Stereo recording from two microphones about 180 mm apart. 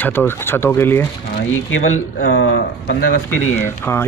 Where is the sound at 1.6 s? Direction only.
90° left.